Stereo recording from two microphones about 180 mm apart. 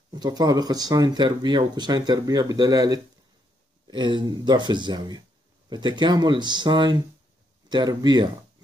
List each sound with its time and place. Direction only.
0.1 s speech: 20° right (ahead or behind)